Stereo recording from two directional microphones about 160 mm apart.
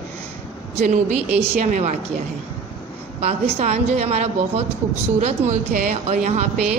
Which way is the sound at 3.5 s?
45° right (ahead or behind).